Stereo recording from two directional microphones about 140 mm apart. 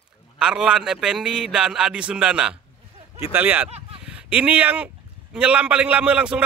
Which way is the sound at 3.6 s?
45° right (ahead or behind).